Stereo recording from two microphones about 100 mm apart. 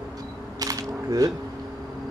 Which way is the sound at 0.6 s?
40° right (ahead or behind).